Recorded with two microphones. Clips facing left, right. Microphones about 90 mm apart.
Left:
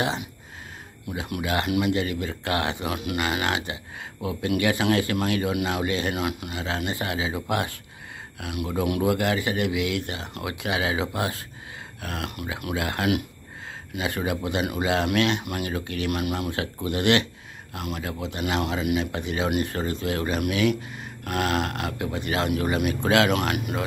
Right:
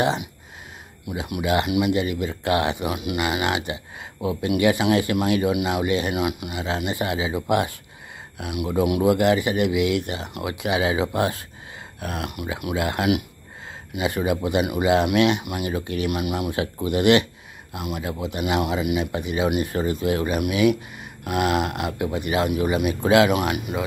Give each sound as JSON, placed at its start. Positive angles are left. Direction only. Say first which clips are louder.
{"t": 0.0, "sound": "speech", "louder": "right 5 dB", "side_deg": -20}
{"t": 23.3, "sound": "speech", "louder": "right 2 dB", "side_deg": -5}